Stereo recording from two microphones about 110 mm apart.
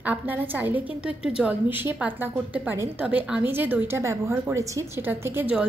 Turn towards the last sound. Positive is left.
turn(degrees=-20)  # may be behind; listen again after turning